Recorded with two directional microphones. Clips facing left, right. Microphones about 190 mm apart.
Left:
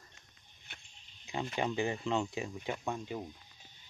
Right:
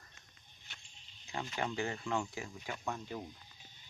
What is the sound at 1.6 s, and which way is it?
Speech, 15° left (ahead or behind).